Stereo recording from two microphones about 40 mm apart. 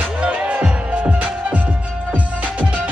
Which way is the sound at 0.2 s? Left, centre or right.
Right.